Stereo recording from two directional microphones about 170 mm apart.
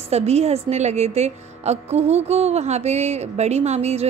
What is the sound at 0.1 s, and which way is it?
A woman's voice, 40° right (ahead or behind).